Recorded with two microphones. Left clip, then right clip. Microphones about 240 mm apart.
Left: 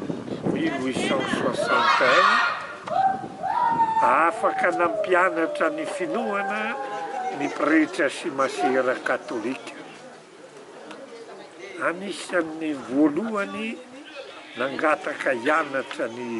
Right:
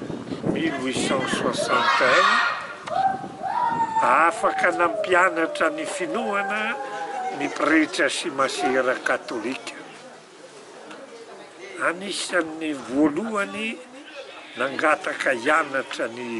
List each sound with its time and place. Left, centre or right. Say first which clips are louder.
0.6 s speech: right 1 dB; centre
11.8 s speech: right 2 dB; centre